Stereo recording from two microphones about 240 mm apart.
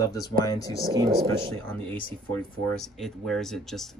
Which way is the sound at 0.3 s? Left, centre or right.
Centre.